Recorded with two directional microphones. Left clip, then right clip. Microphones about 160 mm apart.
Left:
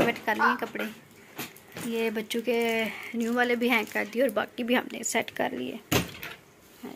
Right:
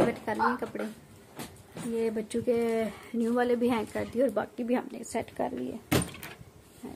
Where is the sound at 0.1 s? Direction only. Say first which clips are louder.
Left 5 dB; 15° right (ahead or behind).